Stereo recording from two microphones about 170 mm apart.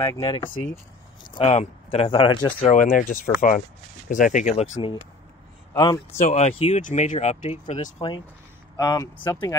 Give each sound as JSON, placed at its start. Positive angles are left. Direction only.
{"t": 0.0, "sound": "speech", "side_deg": 20}
{"t": 1.3, "sound": "speech", "side_deg": 35}
{"t": 2.7, "sound": "speech", "side_deg": 50}
{"t": 5.7, "sound": "speech", "side_deg": 25}
{"t": 6.1, "sound": "speech", "side_deg": 45}
{"t": 8.7, "sound": "speech", "side_deg": 20}